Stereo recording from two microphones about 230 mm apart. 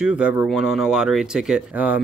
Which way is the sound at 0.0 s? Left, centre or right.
Centre.